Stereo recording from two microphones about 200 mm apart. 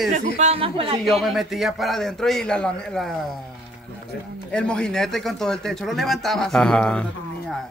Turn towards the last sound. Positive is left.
turn(degrees=5)  # may be behind; listen again after turning